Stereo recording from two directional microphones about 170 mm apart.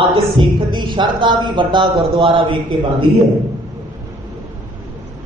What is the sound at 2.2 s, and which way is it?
Speech, 30° right (ahead or behind).